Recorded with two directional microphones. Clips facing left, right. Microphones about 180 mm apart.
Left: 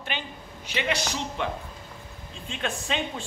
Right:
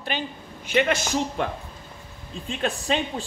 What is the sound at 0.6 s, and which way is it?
A man's voice, 50° right (ahead or behind).